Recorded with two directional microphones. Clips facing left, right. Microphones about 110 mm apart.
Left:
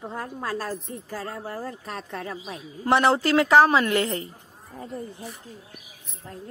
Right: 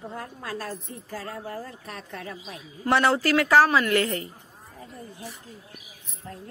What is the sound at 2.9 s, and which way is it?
Speech, 20° left (ahead or behind).